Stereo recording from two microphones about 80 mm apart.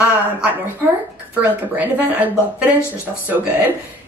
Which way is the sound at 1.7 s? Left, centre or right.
Right.